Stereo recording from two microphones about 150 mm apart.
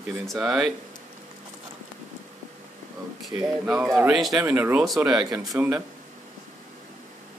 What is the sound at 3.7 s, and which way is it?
Speech, centre (ahead or behind).